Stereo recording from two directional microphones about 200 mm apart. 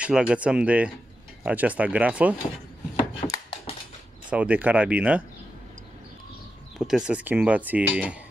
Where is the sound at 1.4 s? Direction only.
5° right (ahead or behind).